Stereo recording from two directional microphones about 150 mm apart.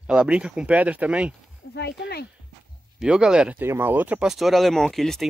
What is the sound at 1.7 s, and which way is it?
Speech, 90° left.